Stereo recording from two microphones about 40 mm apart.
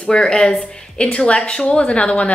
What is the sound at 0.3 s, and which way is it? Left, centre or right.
A woman's voice, centre.